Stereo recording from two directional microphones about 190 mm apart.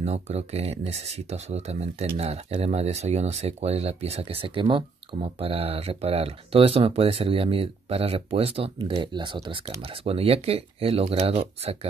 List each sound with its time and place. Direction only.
0.0 s speech: 35° right (ahead or behind)